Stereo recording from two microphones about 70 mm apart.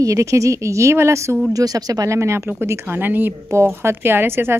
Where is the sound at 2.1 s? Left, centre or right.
Right.